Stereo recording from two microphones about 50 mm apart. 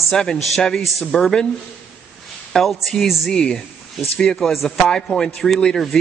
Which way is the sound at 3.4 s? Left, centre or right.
Centre.